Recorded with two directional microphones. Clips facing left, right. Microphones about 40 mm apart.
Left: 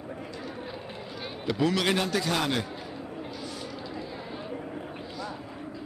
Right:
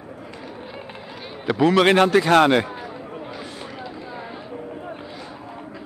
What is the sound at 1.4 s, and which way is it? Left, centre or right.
Speech, right.